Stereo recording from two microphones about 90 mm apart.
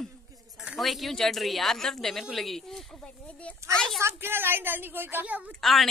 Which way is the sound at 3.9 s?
25° right (ahead or behind).